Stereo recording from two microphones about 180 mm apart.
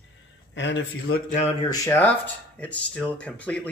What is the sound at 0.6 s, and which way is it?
Speech, 85° left.